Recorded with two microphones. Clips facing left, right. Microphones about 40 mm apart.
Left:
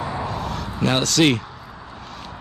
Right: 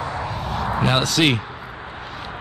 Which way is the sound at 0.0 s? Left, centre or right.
Centre.